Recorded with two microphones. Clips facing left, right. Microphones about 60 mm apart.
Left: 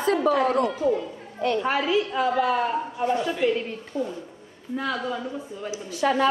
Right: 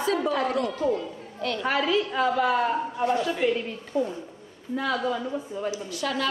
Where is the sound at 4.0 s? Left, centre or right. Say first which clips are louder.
Right 2 dB; left.